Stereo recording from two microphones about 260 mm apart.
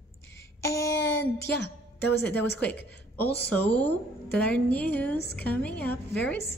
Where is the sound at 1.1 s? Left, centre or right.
Left.